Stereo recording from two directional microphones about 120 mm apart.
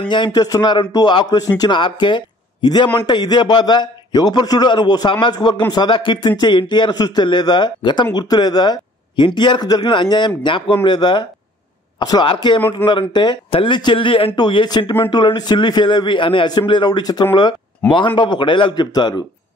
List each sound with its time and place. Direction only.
0.1 s a man's voice: 35° left (ahead or behind)